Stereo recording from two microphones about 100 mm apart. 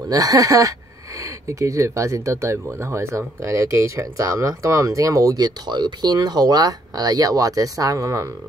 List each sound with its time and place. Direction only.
0.1 s speech: 35° right (ahead or behind)